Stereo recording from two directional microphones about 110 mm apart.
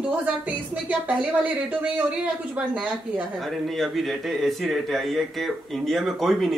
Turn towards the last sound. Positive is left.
turn(degrees=0)  # may be behind; listen again after turning